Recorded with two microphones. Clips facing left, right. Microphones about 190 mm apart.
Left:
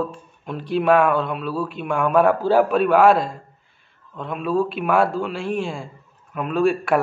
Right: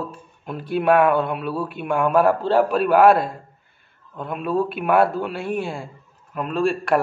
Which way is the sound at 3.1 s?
60° right (ahead or behind).